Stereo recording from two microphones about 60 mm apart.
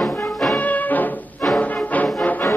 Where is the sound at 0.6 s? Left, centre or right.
Left.